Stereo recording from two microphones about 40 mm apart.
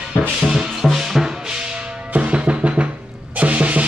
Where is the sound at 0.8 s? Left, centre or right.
Centre.